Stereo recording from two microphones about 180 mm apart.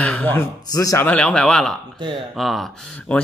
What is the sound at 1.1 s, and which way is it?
Speech, 5° left (ahead or behind).